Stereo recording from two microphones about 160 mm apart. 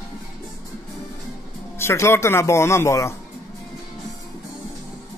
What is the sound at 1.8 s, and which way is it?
Speech, 15° left (ahead or behind).